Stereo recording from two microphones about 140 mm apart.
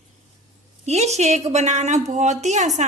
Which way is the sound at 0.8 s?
55° right (ahead or behind).